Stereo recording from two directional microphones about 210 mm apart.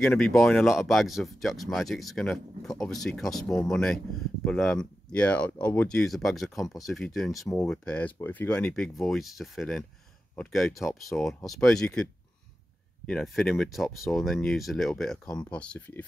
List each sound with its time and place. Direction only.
0.0 s speech: 5° left (ahead or behind)